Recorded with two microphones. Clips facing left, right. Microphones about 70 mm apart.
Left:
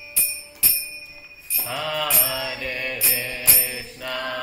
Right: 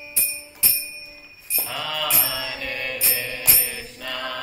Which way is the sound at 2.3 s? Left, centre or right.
Centre.